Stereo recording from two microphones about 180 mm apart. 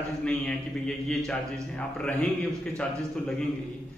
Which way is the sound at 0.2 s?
5° left (ahead or behind).